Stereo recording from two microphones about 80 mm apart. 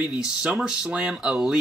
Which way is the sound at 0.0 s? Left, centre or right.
Centre.